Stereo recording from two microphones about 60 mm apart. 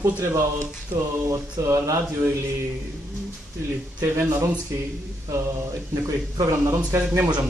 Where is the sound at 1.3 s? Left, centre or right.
Right.